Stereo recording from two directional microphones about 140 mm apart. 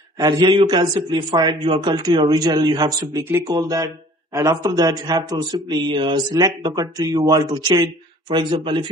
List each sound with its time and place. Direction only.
0.5 s speech: 30° right (ahead or behind)